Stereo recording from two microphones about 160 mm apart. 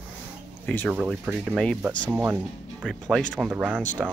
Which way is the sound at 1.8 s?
20° right (ahead or behind).